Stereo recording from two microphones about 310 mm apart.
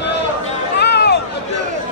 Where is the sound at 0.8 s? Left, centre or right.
Left.